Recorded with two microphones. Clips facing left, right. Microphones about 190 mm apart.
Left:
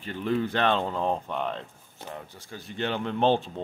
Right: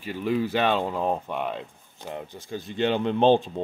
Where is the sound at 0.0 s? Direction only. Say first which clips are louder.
Right 2 dB; 10° right (ahead or behind).